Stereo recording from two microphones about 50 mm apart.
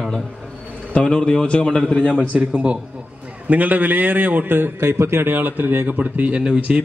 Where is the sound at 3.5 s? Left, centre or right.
Right.